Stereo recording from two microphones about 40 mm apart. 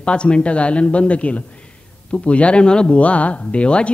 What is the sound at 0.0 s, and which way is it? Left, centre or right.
Speech, left.